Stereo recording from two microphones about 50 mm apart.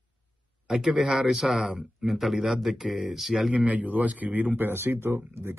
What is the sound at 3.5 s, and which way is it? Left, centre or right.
Speech, right.